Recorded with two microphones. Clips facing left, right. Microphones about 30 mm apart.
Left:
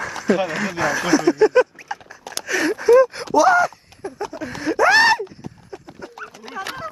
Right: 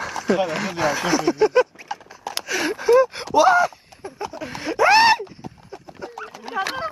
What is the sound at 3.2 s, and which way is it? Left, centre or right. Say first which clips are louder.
Groan: left 1 dB; centre.